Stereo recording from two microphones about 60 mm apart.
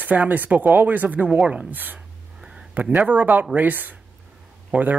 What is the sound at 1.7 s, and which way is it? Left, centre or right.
Speech, right.